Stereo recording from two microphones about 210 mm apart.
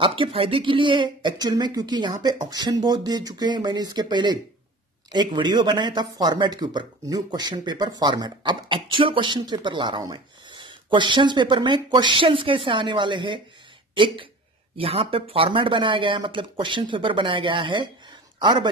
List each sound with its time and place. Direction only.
0.0 s a man's voice: 25° right (ahead or behind)